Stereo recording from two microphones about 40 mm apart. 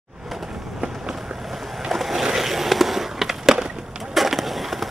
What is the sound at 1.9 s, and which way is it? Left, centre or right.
Skateboard, centre.